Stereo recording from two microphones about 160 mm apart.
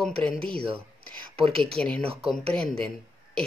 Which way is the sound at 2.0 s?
35° right (ahead or behind).